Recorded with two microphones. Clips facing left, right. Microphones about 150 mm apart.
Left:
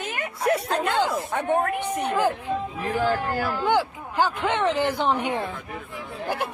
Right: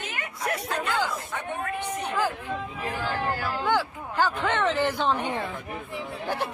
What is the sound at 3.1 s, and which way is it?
Speech, 50° left (ahead or behind).